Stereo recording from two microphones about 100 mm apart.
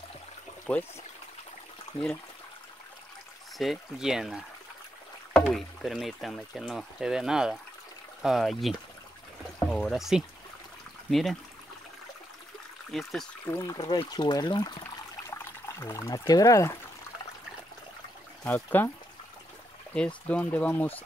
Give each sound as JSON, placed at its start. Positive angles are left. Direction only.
{"t": 3.5, "sound": "speech", "side_deg": 0}
{"t": 5.5, "sound": "speech", "side_deg": 0}
{"t": 12.9, "sound": "speech", "side_deg": 5}
{"t": 13.5, "sound": "speech", "side_deg": 25}
{"t": 13.7, "sound": "speech", "side_deg": 50}
{"t": 14.8, "sound": "water", "side_deg": 25}
{"t": 18.4, "sound": "speech", "side_deg": 20}
{"t": 19.9, "sound": "speech", "side_deg": 10}